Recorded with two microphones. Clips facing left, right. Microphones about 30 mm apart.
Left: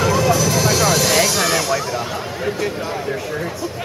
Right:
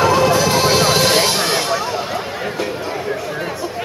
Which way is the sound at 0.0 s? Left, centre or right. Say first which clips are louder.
Right 3 dB; right.